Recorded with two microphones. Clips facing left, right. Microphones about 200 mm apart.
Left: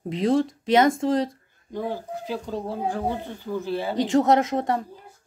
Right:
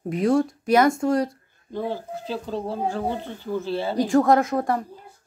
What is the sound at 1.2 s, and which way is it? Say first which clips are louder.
A woman's voice: right 1 dB; 15° left (ahead or behind).